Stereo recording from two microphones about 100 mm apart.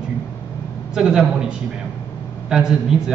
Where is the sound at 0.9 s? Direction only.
5° right (ahead or behind).